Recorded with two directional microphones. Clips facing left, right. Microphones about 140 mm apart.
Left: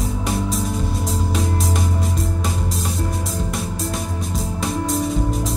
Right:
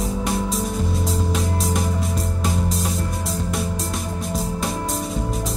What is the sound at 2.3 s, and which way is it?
Music, centre (ahead or behind).